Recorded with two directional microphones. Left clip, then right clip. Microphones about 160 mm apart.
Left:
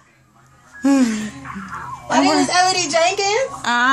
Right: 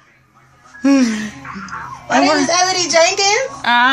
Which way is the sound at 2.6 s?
15° left (ahead or behind).